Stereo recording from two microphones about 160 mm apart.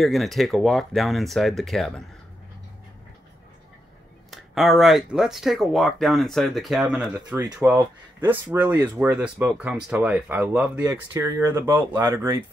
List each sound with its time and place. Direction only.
0.0 s speech: centre (ahead or behind)
4.3 s speech: centre (ahead or behind)
10.8 s speech: 20° right (ahead or behind)